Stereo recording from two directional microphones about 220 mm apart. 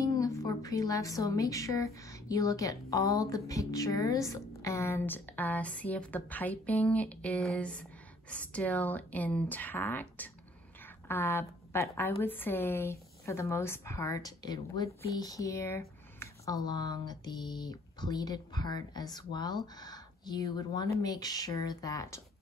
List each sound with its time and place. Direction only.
0.0 s a woman's voice: 15° left (ahead or behind)